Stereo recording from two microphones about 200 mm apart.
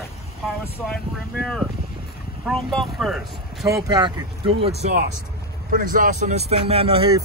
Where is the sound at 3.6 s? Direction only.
15° right (ahead or behind).